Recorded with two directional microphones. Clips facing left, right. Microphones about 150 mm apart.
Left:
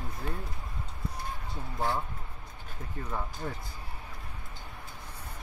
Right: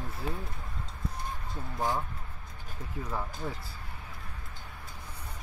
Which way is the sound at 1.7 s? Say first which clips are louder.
Even; 15° right (ahead or behind).